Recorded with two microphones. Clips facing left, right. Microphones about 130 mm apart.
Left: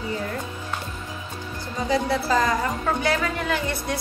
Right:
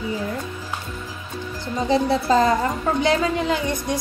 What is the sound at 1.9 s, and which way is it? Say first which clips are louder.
A woman's voice: right 4 dB; 25° right (ahead or behind).